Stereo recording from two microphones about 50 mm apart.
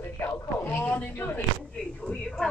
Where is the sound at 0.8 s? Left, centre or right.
Left.